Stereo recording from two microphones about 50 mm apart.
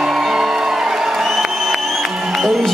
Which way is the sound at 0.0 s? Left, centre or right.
Centre.